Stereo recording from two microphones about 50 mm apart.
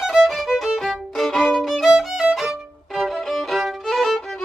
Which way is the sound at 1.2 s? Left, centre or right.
Centre.